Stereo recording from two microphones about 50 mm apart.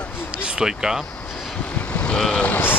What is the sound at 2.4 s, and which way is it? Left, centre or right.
Speech, left.